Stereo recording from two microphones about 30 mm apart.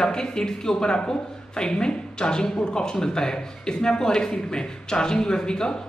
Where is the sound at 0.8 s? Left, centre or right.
Left.